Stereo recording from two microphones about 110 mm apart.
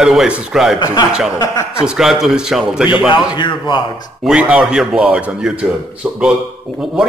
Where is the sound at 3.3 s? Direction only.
45° left (ahead or behind).